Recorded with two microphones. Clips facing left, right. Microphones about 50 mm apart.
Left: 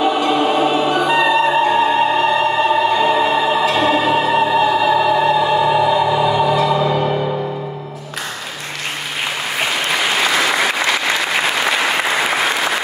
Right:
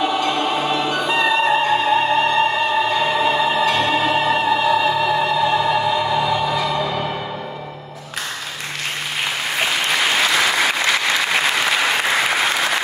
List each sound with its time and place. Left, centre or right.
0.0 s music: centre
10.3 s applause: centre